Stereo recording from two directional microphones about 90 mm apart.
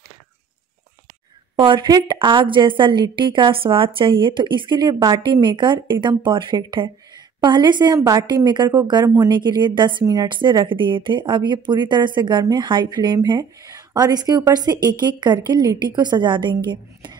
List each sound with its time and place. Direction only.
1.6 s a woman's voice: 60° right (ahead or behind)
9.0 s speech: 35° right (ahead or behind)
9.3 s a woman's voice: 60° right (ahead or behind)
13.6 s a woman's voice: 40° right (ahead or behind); by 17.2 s 60° right (ahead or behind)